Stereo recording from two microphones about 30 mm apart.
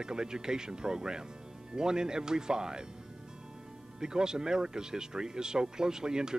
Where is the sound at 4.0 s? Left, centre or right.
Right.